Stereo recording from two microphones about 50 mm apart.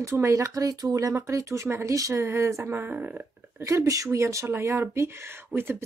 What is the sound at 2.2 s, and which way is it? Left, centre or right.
Speech, right.